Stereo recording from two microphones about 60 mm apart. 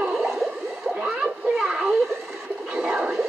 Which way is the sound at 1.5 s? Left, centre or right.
Centre.